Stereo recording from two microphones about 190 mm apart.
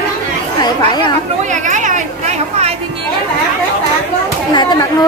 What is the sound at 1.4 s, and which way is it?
Chatter, 40° right (ahead or behind).